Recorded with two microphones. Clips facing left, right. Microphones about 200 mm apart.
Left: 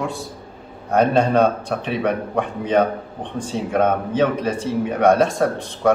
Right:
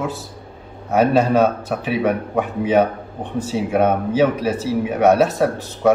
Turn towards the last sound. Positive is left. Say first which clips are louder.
# right 2 dB
turn(degrees=-5)  # may be behind; listen again after turning